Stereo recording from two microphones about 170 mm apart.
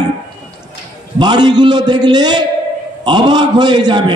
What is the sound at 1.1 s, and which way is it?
A man's voice, 25° right (ahead or behind).